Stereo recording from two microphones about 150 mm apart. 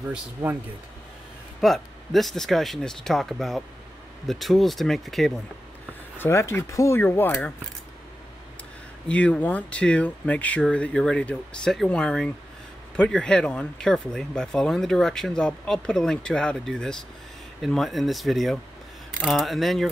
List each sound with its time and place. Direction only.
0.1 s speech: 15° right (ahead or behind)
1.6 s speech: centre (ahead or behind)
6.1 s speech: 15° left (ahead or behind)
9.0 s speech: 10° left (ahead or behind)